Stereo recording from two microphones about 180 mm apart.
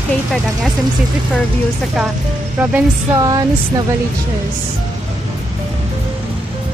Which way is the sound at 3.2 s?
25° right (ahead or behind).